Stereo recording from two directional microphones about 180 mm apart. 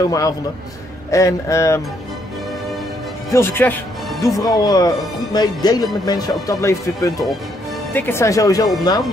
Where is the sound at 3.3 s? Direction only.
15° left (ahead or behind).